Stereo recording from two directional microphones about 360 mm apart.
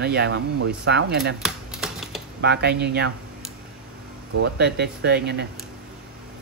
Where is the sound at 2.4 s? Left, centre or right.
Right.